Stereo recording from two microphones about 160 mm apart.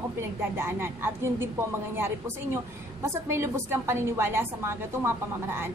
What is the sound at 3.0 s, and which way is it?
A woman's voice, 15° right (ahead or behind).